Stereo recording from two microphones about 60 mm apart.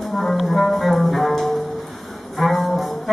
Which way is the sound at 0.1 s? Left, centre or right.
Centre.